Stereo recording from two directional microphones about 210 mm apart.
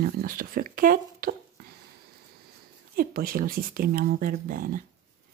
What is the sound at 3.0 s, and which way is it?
Speech, 45° right (ahead or behind).